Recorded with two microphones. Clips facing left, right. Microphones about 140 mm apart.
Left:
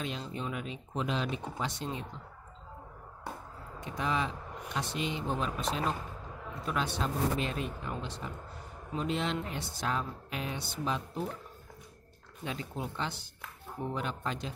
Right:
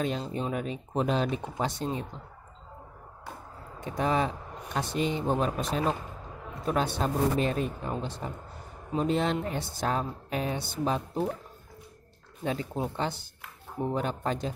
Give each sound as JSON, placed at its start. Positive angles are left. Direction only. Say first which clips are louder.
{"t": 0.0, "sound": "speech", "louder": "right 7 dB", "side_deg": -40}
{"t": 3.9, "sound": "speech", "louder": "right 6 dB", "side_deg": -45}
{"t": 12.4, "sound": "speech", "louder": "right 7 dB", "side_deg": -35}